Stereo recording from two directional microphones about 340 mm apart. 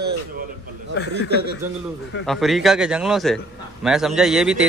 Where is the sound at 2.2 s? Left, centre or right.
Centre.